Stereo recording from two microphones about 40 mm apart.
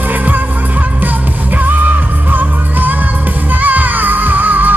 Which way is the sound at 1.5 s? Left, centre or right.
Right.